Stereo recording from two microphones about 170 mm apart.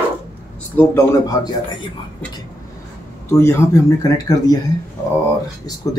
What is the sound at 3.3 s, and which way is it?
Speech, 15° left (ahead or behind).